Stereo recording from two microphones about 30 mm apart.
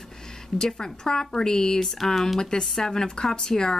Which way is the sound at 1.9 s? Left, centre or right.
Centre.